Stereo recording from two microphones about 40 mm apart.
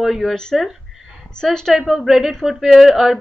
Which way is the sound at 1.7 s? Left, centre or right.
Centre.